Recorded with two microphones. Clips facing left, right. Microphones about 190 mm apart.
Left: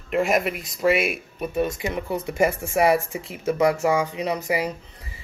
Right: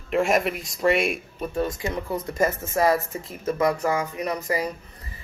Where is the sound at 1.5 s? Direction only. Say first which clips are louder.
Left 2 dB; 20° left (ahead or behind).